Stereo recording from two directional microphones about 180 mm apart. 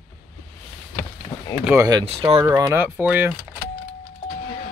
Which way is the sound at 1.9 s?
25° right (ahead or behind).